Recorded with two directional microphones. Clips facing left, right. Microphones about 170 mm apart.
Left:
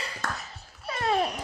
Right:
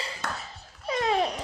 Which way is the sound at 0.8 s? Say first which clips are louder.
Right 1 dB; 15° right (ahead or behind).